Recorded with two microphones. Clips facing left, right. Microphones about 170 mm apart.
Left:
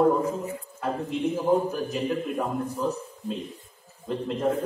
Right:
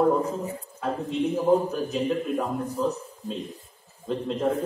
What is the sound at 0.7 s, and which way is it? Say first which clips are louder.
A man's voice: right 2 dB; 5° left (ahead or behind).